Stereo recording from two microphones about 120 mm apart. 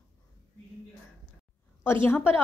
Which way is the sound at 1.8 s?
20° left (ahead or behind).